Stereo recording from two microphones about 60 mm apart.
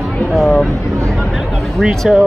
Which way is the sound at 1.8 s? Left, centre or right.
Centre.